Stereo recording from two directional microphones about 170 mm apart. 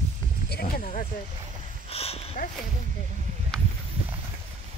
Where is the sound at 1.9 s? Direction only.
35° left (ahead or behind).